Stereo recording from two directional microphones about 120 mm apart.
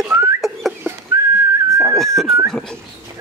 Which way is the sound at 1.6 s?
20° right (ahead or behind).